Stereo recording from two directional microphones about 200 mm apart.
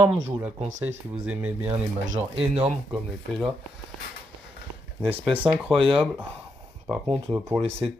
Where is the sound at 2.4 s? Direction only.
30° right (ahead or behind).